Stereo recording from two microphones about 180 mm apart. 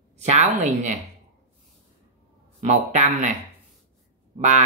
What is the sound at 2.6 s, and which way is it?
Speech, 40° right (ahead or behind).